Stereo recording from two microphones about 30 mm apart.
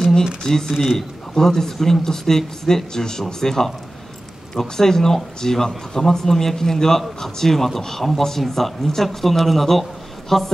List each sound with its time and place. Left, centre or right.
0.4 s speech: centre